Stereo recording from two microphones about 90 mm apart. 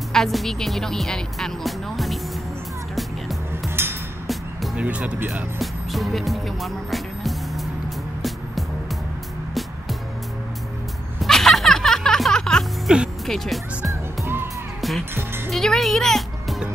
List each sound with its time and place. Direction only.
0.1 s speech: centre (ahead or behind)
3.0 s music: centre (ahead or behind)
4.7 s speech: 15° right (ahead or behind)
5.6 s music: centre (ahead or behind)
11.2 s music: 5° left (ahead or behind)
12.8 s music: 10° right (ahead or behind)
13.3 s speech: centre (ahead or behind)
14.2 s music: 25° right (ahead or behind)
14.8 s music: centre (ahead or behind)
15.1 s music: 25° right (ahead or behind)
15.5 s speech: 5° left (ahead or behind)